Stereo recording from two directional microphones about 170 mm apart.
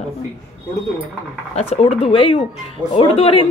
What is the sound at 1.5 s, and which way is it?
A woman's voice, 40° left (ahead or behind).